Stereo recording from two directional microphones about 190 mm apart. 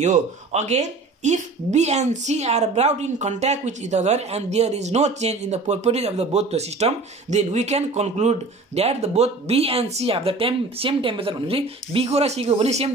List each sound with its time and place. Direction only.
0.0 s speech: 35° right (ahead or behind)